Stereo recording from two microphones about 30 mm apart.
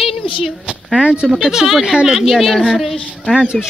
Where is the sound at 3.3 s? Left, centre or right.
Right.